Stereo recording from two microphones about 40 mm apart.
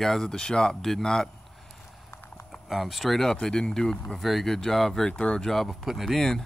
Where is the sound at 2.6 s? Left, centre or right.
Centre.